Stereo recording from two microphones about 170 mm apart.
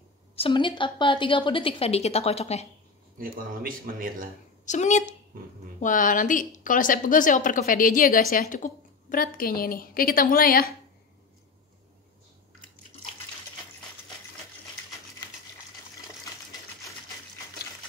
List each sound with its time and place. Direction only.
0.4 s a woman's voice: 30° left (ahead or behind)
3.2 s speech: 55° right (ahead or behind)
4.6 s a woman's voice: 45° left (ahead or behind)